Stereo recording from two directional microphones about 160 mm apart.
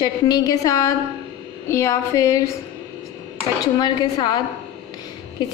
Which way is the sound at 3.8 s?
25° left (ahead or behind).